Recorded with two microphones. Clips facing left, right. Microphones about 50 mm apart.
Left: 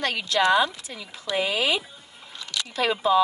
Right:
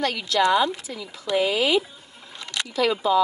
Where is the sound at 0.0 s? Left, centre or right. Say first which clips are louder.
Right 1 dB; left.